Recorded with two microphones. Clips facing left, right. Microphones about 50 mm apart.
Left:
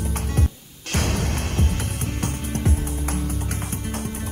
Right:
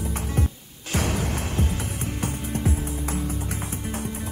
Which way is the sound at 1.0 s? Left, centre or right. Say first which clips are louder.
Left 1 dB; left.